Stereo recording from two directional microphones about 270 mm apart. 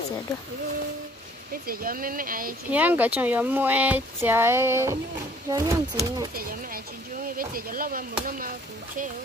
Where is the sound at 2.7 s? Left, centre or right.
Centre.